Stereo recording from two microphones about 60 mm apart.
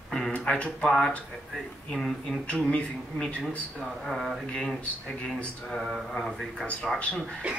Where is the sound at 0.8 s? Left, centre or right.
Centre.